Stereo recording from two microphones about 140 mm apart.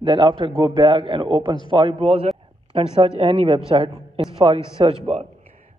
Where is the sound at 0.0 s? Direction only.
35° right (ahead or behind).